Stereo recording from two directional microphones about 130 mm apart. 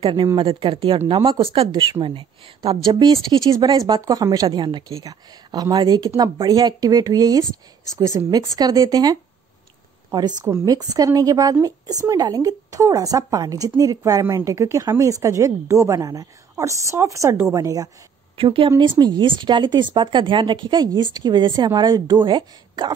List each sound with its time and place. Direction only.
0.0 s a woman's voice: 40° right (ahead or behind)
3.0 s a woman's voice: 30° right (ahead or behind)
10.4 s a woman's voice: 25° right (ahead or behind)
18.4 s a woman's voice: 40° right (ahead or behind)